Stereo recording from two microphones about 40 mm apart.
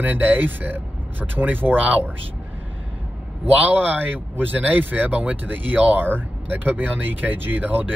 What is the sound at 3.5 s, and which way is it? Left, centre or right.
Speech, right.